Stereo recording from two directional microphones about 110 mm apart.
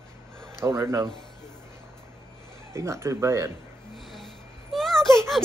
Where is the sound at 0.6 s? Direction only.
25° right (ahead or behind).